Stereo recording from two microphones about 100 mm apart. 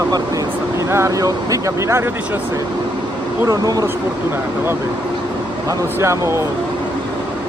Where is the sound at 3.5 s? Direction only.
40° right (ahead or behind).